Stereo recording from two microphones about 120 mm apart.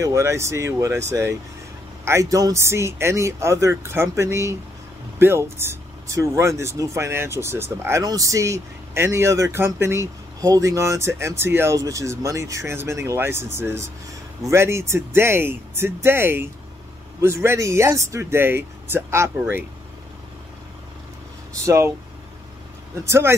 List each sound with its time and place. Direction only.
0.0 s a man's voice: 25° right (ahead or behind)
8.0 s a man's voice: 30° right (ahead or behind)
21.6 s a man's voice: 25° right (ahead or behind)
23.0 s a man's voice: 20° right (ahead or behind)